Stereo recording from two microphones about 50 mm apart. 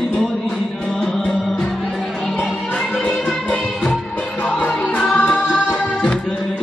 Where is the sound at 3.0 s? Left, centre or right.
Left.